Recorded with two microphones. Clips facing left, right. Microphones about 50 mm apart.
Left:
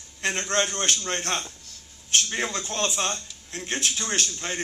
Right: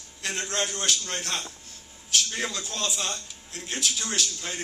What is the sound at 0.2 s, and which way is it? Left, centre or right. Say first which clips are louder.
A man's voice: left 4 dB; left.